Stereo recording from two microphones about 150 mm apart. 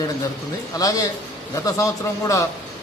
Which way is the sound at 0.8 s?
25° left (ahead or behind).